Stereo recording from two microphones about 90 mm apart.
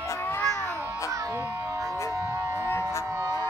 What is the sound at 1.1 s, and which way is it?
Music, 35° right (ahead or behind).